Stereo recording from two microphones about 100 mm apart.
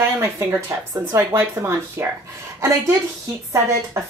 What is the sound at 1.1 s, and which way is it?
Speech, 25° right (ahead or behind).